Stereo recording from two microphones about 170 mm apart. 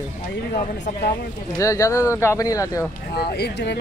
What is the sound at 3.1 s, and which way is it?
Speech, 70° left (ahead or behind).